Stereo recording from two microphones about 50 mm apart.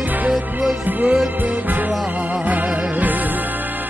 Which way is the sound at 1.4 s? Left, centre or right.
Right.